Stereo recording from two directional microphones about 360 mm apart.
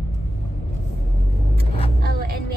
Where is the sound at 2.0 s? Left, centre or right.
Right.